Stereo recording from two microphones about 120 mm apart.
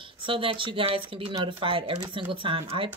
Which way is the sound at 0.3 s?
45° right (ahead or behind).